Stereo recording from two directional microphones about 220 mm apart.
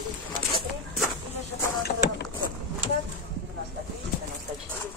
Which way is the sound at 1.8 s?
50° left (ahead or behind).